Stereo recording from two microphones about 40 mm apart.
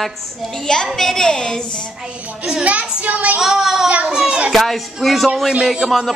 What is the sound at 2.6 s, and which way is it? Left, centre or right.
Speech, right.